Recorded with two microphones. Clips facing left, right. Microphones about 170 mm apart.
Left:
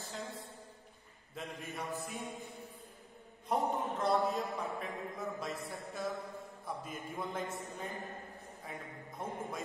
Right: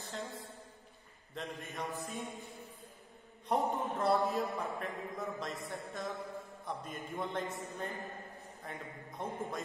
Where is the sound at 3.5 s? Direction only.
Centre (ahead or behind).